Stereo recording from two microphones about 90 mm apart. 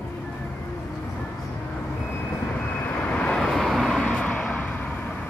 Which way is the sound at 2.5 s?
15° left (ahead or behind).